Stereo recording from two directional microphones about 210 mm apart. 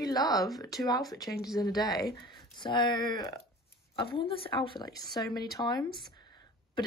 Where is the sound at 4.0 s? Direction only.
25° left (ahead or behind).